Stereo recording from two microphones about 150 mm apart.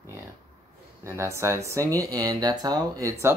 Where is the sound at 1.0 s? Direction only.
20° right (ahead or behind).